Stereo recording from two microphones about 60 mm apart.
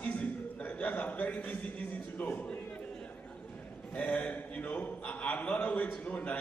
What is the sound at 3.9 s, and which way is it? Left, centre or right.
A man's voice, left.